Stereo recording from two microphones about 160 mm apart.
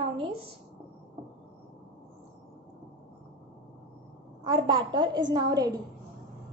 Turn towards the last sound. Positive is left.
turn(degrees=-25)  # may be behind; listen again after turning